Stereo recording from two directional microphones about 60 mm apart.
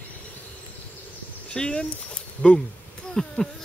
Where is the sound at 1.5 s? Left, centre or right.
Centre.